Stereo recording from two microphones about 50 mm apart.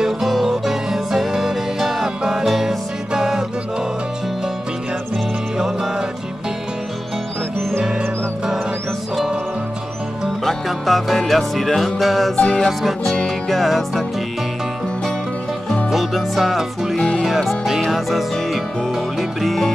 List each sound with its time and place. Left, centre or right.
0.0 s music: centre
10.4 s music: centre
15.9 s music: centre